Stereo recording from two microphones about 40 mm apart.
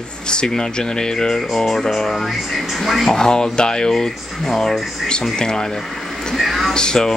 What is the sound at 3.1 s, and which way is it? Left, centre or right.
Speech, centre.